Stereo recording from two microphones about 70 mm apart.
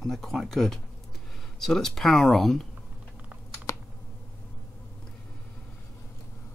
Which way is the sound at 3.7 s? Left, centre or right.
Left.